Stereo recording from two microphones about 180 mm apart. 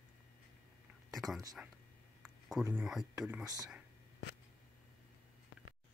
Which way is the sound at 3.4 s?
20° right (ahead or behind).